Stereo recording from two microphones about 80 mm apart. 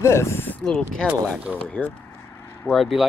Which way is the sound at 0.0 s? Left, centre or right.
Left.